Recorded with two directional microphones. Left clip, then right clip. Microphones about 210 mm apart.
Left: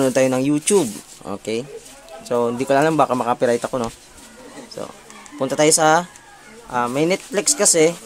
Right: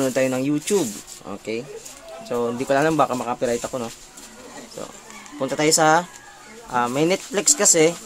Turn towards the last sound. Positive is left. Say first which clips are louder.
# left 1 dB
turn(degrees=5)  # may be behind; listen again after turning